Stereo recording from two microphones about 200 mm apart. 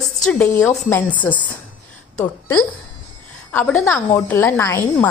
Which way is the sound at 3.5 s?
10° left (ahead or behind).